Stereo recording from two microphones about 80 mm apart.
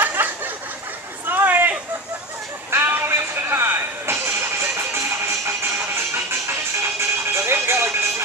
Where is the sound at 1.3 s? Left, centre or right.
Right.